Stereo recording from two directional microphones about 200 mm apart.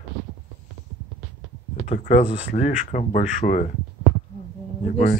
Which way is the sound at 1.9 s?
35° left (ahead or behind).